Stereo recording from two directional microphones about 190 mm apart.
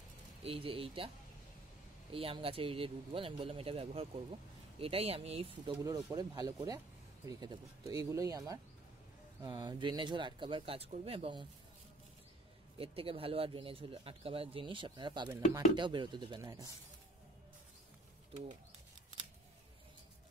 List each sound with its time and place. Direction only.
0.4 s speech: 30° right (ahead or behind)
2.1 s speech: 30° right (ahead or behind)
5.9 s speech: 20° right (ahead or behind)
12.7 s speech: 30° right (ahead or behind)